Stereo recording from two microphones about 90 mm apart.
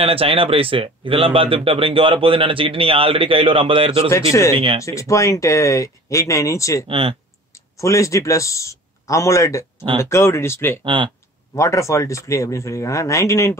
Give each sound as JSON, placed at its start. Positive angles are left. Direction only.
{"t": 0.0, "sound": "speech", "side_deg": -90}
{"t": 4.1, "sound": "speech", "side_deg": 35}
{"t": 6.9, "sound": "speech", "side_deg": -90}
{"t": 7.7, "sound": "speech", "side_deg": 35}
{"t": 10.8, "sound": "speech", "side_deg": -65}
{"t": 11.5, "sound": "speech", "side_deg": 35}